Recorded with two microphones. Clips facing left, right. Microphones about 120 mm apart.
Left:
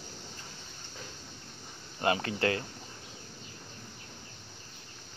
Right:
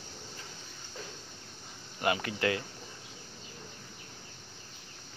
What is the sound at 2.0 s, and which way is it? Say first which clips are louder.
Speech: left 2 dB; 30° left (ahead or behind).